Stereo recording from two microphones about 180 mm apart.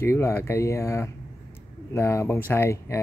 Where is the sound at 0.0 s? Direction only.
15° left (ahead or behind).